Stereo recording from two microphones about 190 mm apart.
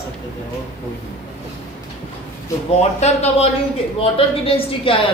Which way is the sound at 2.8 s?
35° left (ahead or behind).